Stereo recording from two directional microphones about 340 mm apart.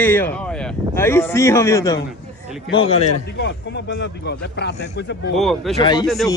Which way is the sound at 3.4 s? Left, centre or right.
Left.